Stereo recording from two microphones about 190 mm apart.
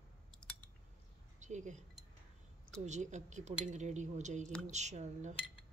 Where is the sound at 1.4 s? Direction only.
40° right (ahead or behind).